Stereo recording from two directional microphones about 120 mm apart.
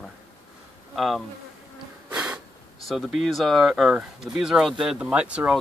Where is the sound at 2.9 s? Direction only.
Centre (ahead or behind).